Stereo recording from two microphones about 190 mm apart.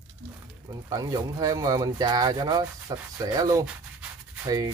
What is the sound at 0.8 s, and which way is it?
Speech, 20° right (ahead or behind).